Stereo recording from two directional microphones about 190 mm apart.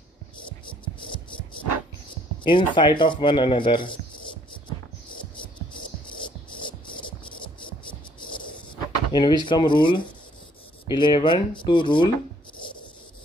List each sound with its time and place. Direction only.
2.4 s speech: 25° left (ahead or behind)
9.1 s speech: 20° left (ahead or behind)